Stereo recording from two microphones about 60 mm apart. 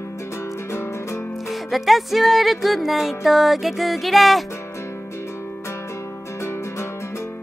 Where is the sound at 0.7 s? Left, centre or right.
Left.